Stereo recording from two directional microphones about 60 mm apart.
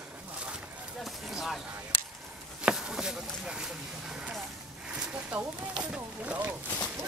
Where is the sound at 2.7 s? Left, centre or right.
Centre.